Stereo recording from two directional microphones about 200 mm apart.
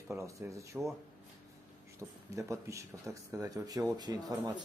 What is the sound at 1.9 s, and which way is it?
Mantra, 15° right (ahead or behind).